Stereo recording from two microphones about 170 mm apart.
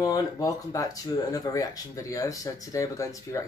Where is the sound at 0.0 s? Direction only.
20° left (ahead or behind).